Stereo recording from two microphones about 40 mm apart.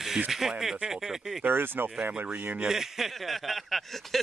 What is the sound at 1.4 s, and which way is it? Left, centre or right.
Speech, right.